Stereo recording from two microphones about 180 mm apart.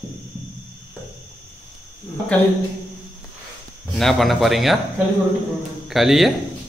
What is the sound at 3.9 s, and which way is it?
Speech, centre (ahead or behind).